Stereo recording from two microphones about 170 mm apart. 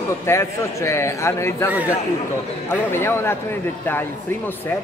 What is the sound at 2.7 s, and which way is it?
A man's voice, 10° left (ahead or behind).